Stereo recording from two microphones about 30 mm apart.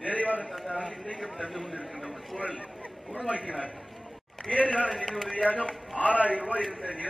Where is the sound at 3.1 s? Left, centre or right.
Right.